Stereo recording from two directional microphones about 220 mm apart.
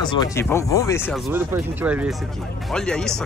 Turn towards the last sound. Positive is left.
turn(degrees=5)  # may be behind; listen again after turning